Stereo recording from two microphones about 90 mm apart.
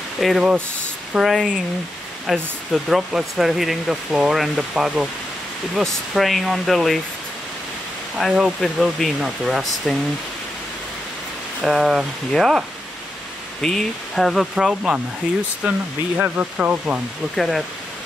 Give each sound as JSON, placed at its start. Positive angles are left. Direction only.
{"t": 0.2, "sound": "speech", "side_deg": 0}
{"t": 8.2, "sound": "speech", "side_deg": 0}
{"t": 11.6, "sound": "speech", "side_deg": -5}
{"t": 16.2, "sound": "frying", "side_deg": -20}
{"t": 17.4, "sound": "speech", "side_deg": 0}